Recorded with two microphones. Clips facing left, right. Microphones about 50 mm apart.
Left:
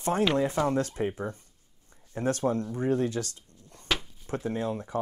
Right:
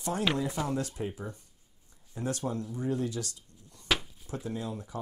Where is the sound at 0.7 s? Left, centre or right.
Left.